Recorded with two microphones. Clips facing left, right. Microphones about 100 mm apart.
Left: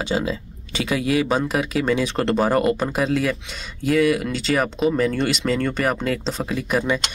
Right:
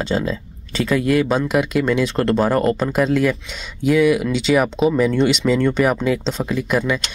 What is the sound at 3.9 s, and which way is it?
Speech, centre (ahead or behind).